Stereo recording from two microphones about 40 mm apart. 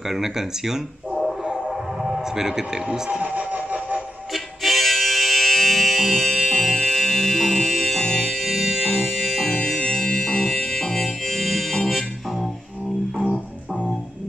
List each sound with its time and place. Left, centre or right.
0.1 s speech: centre
1.4 s train: centre
3.2 s a sound: right
4.3 s music: centre
8.5 s music: centre
9.8 s music: left; by 11.7 s centre